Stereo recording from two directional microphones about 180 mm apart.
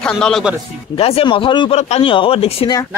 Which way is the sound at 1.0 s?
30° left (ahead or behind).